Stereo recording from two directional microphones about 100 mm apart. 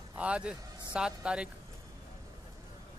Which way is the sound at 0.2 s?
10° right (ahead or behind).